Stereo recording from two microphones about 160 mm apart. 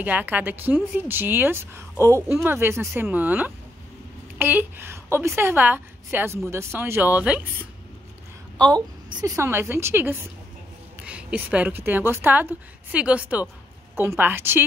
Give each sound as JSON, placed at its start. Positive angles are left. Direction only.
{"t": 0.0, "sound": "a woman's voice", "side_deg": -10}
{"t": 8.5, "sound": "a woman's voice", "side_deg": -25}